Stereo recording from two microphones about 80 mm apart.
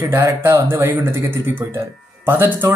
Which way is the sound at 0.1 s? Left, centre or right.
Right.